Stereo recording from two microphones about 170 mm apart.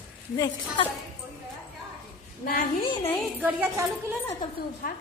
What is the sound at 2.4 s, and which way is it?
Speech, 65° left (ahead or behind).